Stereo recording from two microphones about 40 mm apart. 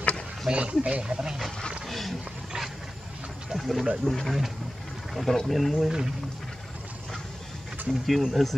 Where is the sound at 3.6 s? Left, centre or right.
Centre.